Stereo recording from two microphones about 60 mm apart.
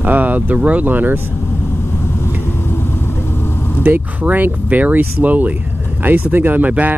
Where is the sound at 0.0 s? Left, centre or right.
Right.